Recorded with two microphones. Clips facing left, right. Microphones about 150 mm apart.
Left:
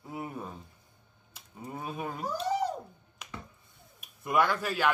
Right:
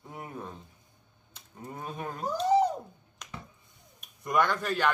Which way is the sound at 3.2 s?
5° left (ahead or behind).